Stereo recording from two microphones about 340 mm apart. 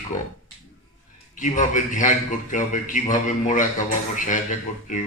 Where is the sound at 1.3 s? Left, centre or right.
Left.